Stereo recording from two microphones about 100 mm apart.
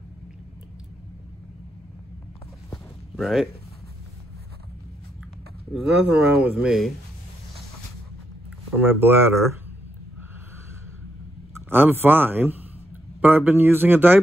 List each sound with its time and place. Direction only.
3.2 s speech: centre (ahead or behind)
6.0 s speech: 15° right (ahead or behind)
8.7 s speech: 20° right (ahead or behind)
11.5 s a man's voice: 20° right (ahead or behind)